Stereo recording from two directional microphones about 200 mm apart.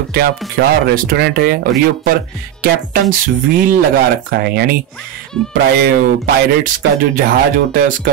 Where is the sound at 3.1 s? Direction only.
45° right (ahead or behind).